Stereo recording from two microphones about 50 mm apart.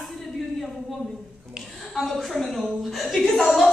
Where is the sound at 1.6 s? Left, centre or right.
Centre.